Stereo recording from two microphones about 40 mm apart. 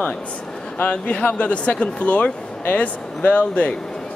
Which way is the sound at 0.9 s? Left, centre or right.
Left.